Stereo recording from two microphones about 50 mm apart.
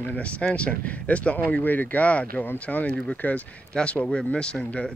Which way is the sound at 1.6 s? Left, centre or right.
Left.